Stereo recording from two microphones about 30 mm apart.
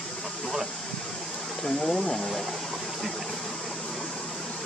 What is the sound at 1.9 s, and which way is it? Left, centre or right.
Speech, left.